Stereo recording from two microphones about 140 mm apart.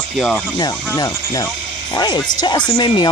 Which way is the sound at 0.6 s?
30° left (ahead or behind).